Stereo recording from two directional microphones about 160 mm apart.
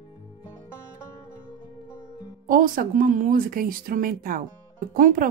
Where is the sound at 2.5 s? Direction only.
60° right (ahead or behind).